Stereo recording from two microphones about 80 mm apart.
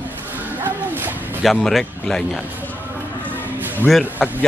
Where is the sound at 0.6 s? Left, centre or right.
Right.